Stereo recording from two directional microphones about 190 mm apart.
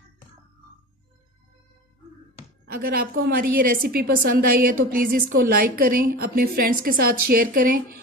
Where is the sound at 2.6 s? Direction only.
55° right (ahead or behind).